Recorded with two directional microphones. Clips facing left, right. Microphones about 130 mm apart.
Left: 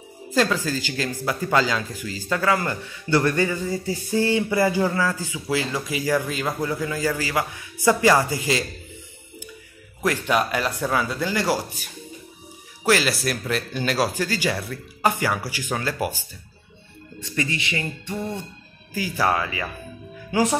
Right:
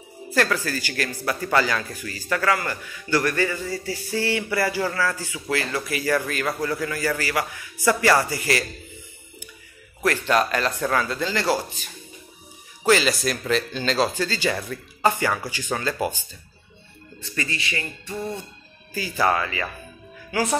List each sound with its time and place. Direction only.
0.3 s speech: 15° left (ahead or behind)
10.0 s speech: 10° left (ahead or behind)
17.2 s speech: 20° left (ahead or behind)
20.2 s a woman's voice: 20° left (ahead or behind)